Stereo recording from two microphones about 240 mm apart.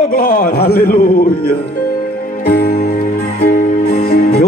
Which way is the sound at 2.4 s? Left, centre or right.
Left.